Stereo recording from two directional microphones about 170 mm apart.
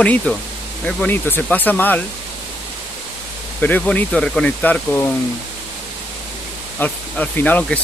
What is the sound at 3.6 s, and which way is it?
Speech, 10° left (ahead or behind).